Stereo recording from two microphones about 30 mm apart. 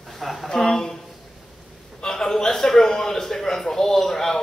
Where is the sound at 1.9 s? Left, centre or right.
Centre.